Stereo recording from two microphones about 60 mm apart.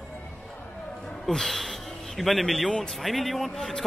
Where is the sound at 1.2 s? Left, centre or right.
Centre.